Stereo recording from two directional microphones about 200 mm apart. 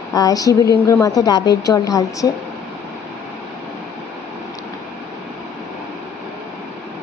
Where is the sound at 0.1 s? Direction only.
20° left (ahead or behind).